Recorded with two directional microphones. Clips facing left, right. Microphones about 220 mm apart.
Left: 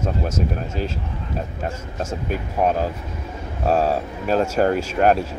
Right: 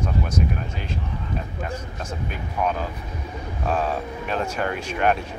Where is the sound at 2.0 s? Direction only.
40° left (ahead or behind).